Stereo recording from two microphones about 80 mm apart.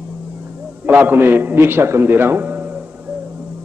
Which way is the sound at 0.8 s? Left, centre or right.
Right.